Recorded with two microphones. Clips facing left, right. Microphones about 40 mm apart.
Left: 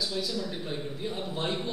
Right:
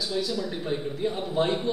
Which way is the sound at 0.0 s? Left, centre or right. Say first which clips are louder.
Right 3 dB; centre.